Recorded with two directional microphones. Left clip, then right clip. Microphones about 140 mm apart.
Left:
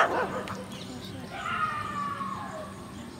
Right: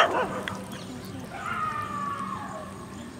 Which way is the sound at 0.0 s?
30° right (ahead or behind).